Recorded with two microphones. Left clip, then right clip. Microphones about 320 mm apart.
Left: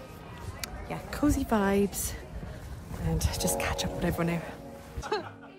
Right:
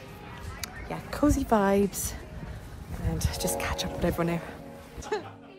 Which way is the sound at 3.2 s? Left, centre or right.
Centre.